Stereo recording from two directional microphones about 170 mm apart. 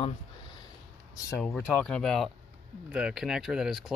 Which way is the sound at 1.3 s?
5° left (ahead or behind).